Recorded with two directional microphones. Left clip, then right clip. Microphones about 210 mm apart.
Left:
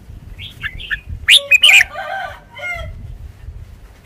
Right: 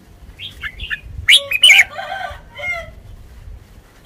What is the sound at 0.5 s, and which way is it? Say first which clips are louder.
Bird: left 3 dB; 10° left (ahead or behind).